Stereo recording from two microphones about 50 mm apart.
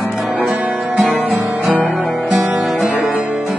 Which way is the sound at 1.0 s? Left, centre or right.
Centre.